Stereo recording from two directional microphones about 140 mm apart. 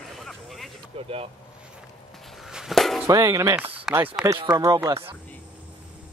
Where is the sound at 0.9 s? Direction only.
45° right (ahead or behind).